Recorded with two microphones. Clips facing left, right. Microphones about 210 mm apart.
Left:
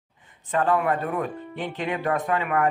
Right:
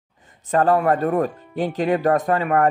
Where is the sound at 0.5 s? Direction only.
40° right (ahead or behind).